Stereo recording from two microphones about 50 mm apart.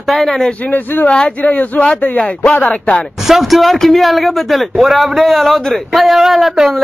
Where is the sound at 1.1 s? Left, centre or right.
Left.